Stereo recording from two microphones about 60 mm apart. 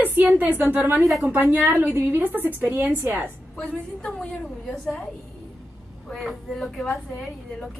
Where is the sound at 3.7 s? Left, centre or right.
Left.